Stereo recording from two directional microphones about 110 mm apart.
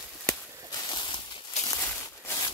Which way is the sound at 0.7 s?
40° left (ahead or behind).